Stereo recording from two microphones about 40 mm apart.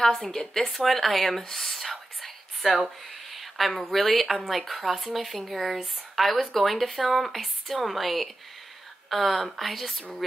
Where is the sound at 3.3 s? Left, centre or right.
Centre.